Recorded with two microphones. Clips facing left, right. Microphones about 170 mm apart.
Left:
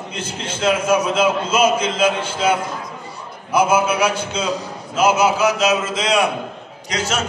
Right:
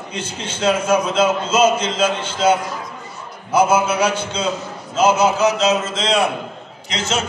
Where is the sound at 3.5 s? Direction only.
10° left (ahead or behind).